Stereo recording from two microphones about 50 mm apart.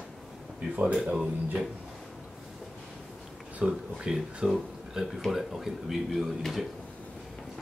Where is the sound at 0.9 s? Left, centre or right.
Centre.